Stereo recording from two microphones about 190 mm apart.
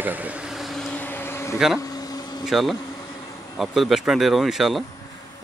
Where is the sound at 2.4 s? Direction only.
Centre (ahead or behind).